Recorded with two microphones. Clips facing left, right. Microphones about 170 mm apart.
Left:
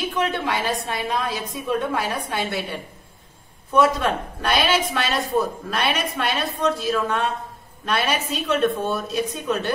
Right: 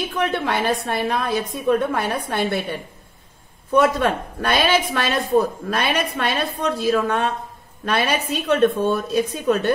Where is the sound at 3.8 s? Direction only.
60° right (ahead or behind).